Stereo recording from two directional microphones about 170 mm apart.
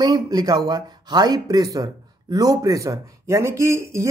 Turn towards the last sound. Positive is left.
turn(degrees=-15)  # may be behind; listen again after turning